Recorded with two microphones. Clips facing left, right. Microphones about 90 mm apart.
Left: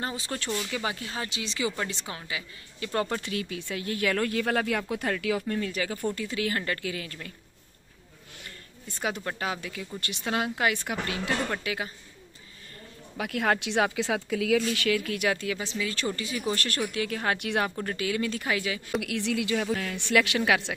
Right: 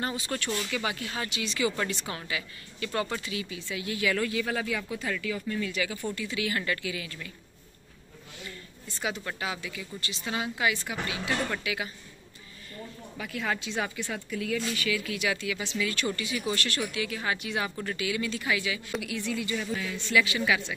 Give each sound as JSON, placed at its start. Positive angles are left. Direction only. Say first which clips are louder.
{"t": 0.0, "sound": "speech", "louder": "right 1 dB", "side_deg": 25}
{"t": 2.9, "sound": "speech", "louder": "left 3 dB", "side_deg": 40}
{"t": 3.2, "sound": "speech", "louder": "left 3 dB", "side_deg": 55}
{"t": 5.5, "sound": "speech", "louder": "left 1 dB", "side_deg": 45}
{"t": 8.5, "sound": "a sound", "louder": "left 1 dB", "side_deg": 50}
{"t": 9.4, "sound": "speech", "louder": "left 2 dB", "side_deg": 45}
{"t": 9.9, "sound": "speech", "louder": "left 4 dB", "side_deg": 55}
{"t": 11.6, "sound": "speech", "louder": "left 1 dB", "side_deg": 40}
{"t": 13.2, "sound": "a woman's voice", "louder": "left 6 dB", "side_deg": 65}
{"t": 15.0, "sound": "speech", "louder": "left 3 dB", "side_deg": 50}
{"t": 17.6, "sound": "speech", "louder": "left 2 dB", "side_deg": 40}
{"t": 18.9, "sound": "speech", "louder": "left 6 dB", "side_deg": 65}